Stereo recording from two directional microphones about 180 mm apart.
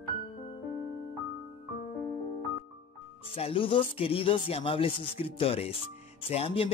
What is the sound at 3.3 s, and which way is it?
Speech, 30° left (ahead or behind).